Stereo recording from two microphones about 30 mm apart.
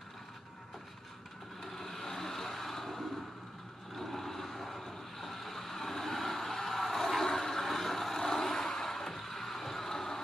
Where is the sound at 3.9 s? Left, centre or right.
Centre.